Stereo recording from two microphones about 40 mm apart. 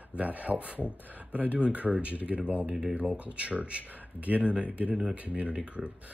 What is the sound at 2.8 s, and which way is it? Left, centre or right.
Speech, centre.